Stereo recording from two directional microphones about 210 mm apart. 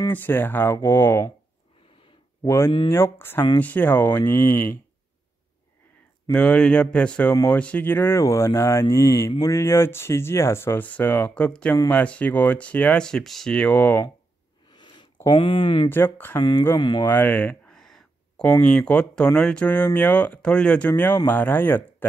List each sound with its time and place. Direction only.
0.0 s speech: 10° left (ahead or behind)
2.4 s speech: 10° left (ahead or behind)
6.3 s speech: 5° left (ahead or behind)
14.7 s a sound: 20° left (ahead or behind)
15.9 s speech: 10° left (ahead or behind)
17.0 s a sound: 10° left (ahead or behind)
18.5 s speech: 5° left (ahead or behind)